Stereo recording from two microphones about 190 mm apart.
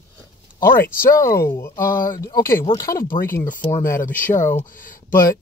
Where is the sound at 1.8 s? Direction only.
45° left (ahead or behind).